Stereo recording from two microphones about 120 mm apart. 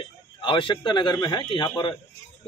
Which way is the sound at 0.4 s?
45° left (ahead or behind).